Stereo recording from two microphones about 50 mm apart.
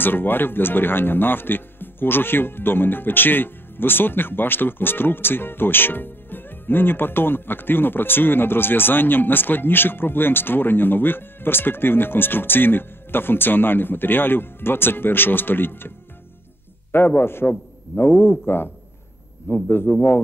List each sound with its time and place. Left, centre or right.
0.0 s speech: left
16.9 s a man's voice: left
19.9 s a man's voice: left